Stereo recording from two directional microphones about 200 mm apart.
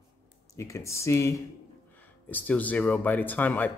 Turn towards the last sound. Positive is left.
turn(degrees=10)  # may be behind; listen again after turning